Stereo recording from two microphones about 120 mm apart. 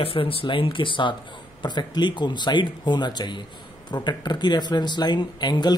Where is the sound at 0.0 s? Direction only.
50° left (ahead or behind).